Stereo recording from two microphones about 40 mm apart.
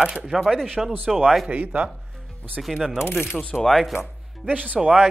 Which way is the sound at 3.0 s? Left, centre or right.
Left.